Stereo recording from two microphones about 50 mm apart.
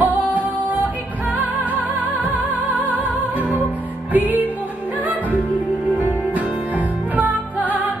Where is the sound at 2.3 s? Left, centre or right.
Right.